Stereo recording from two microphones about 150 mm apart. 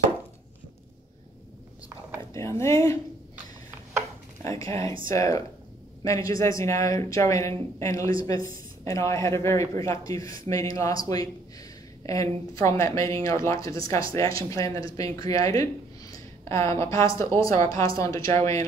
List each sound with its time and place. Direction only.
2.3 s speech: 20° left (ahead or behind)
4.4 s speech: 20° left (ahead or behind)